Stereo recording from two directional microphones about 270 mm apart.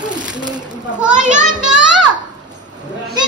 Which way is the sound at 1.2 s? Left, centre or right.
Right.